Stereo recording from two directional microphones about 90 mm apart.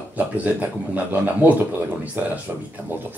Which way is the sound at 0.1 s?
15° right (ahead or behind).